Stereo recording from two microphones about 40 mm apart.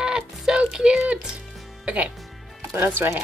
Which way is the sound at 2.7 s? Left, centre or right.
Right.